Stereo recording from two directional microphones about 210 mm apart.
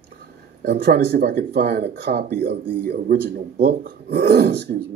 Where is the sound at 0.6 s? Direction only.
50° right (ahead or behind).